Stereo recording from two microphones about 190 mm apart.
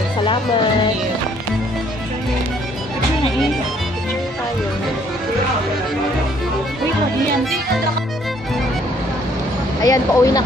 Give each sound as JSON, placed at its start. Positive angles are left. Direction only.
{"t": 0.2, "sound": "speech", "side_deg": 25}
{"t": 9.8, "sound": "speech", "side_deg": 20}